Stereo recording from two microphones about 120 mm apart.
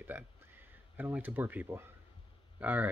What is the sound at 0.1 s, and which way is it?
Speech, 20° right (ahead or behind).